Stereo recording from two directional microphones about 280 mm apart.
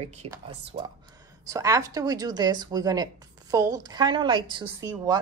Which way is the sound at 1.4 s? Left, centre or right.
Centre.